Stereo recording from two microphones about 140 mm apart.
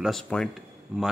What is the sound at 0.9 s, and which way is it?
Speech, 5° right (ahead or behind).